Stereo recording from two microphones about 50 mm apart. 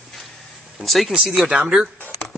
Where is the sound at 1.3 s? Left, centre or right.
Centre.